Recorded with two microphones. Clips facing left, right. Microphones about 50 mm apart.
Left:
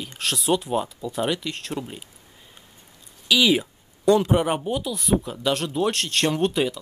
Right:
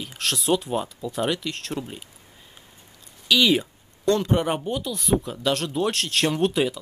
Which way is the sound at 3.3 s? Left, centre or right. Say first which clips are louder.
Even; centre.